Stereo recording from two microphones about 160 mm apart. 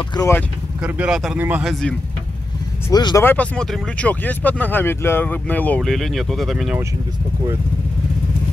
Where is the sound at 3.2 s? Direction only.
10° left (ahead or behind).